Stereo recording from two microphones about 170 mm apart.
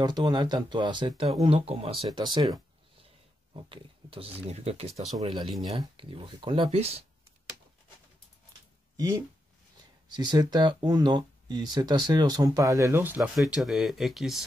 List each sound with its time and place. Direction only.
0.0 s speech: 25° right (ahead or behind)
10.1 s speech: 25° right (ahead or behind)
13.4 s speech: centre (ahead or behind)